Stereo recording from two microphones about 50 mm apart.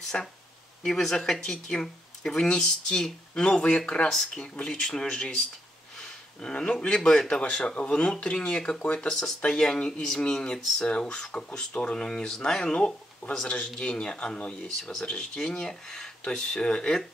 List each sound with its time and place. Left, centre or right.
0.1 s speech: centre
7.4 s speech: left
14.8 s speech: centre
15.0 s speech: centre